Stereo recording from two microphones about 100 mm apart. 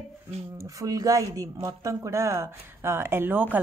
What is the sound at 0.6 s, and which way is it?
A woman's voice, 35° right (ahead or behind).